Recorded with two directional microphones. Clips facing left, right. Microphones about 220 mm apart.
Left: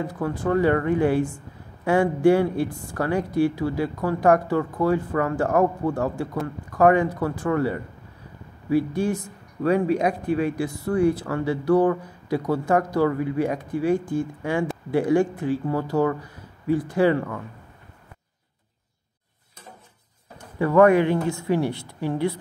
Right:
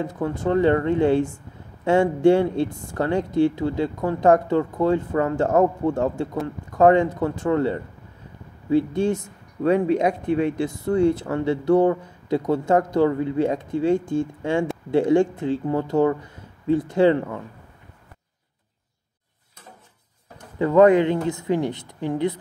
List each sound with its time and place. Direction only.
0.0 s speech: 25° right (ahead or behind)
20.5 s speech: 20° right (ahead or behind)